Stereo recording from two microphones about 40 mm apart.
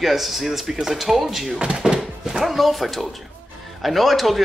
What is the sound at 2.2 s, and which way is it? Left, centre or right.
Speech, centre.